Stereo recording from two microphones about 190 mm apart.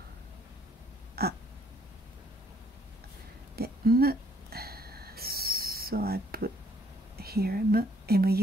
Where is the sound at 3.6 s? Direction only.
50° right (ahead or behind).